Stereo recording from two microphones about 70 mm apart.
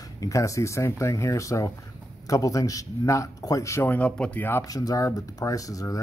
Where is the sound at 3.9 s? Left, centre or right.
Centre.